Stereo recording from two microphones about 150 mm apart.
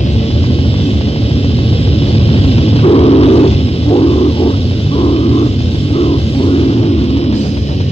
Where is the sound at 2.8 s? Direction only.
40° left (ahead or behind).